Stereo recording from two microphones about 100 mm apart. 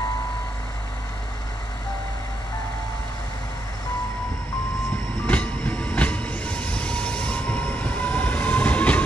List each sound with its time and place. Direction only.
5.2 s train: 15° left (ahead or behind)